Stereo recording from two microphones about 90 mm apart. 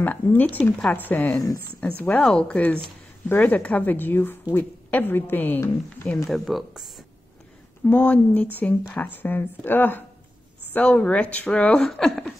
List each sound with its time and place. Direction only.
0.0 s a woman's voice: 20° left (ahead or behind)
6.2 s speech: centre (ahead or behind)
7.8 s a woman's voice: 15° left (ahead or behind)
11.9 s speech: centre (ahead or behind)